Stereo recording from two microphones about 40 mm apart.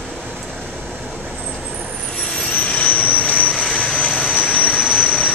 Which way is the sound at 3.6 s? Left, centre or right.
Left.